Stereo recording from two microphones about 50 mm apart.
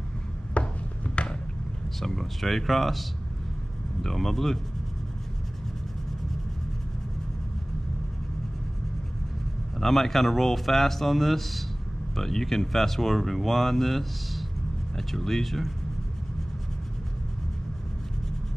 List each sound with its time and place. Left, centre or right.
0.6 s chopping: left
2.0 s speech: centre
9.8 s speech: centre